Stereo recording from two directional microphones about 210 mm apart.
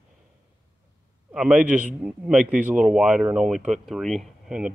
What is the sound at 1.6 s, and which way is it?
Speech, 35° right (ahead or behind).